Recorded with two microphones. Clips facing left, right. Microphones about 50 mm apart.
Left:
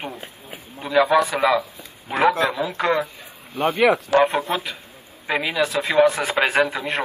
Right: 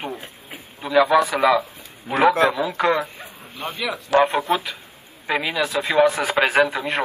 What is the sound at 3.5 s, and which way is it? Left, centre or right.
Speech, left.